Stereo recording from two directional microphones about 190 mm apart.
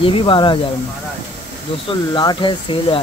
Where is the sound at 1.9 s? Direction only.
25° left (ahead or behind).